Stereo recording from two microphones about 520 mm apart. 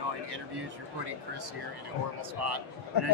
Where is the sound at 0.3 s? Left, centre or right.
Right.